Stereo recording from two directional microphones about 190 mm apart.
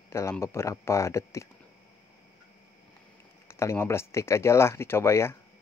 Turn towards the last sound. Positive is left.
turn(degrees=15)  # may be behind; listen again after turning